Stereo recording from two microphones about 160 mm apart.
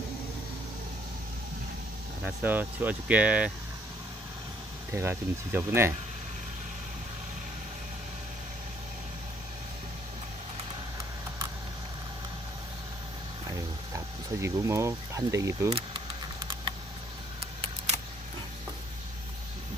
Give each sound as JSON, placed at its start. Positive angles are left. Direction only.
{"t": 2.2, "sound": "speech", "side_deg": -10}
{"t": 4.9, "sound": "speech", "side_deg": -15}
{"t": 13.9, "sound": "speech", "side_deg": -20}
{"t": 17.6, "sound": "a sound", "side_deg": -40}